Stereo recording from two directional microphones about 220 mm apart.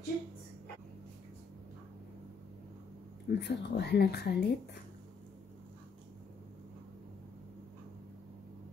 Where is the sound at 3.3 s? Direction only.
50° left (ahead or behind).